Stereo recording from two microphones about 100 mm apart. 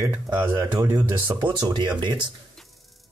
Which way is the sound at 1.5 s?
45° right (ahead or behind).